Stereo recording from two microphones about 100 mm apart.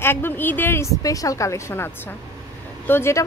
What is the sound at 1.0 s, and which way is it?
Speech, 35° left (ahead or behind).